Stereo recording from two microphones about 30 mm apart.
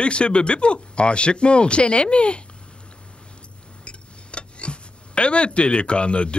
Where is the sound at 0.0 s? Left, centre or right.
Left.